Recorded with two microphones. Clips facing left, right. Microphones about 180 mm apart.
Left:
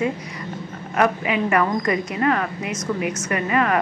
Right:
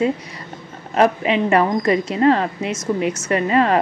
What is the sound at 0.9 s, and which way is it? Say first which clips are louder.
A woman's voice: right 4 dB; 25° right (ahead or behind).